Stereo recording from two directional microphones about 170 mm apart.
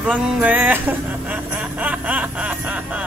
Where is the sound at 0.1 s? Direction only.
10° right (ahead or behind).